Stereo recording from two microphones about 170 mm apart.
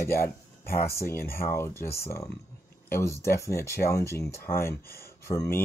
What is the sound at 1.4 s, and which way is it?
Speech, 15° left (ahead or behind).